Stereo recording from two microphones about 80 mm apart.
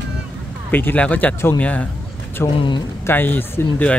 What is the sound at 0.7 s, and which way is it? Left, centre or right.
Speech, left.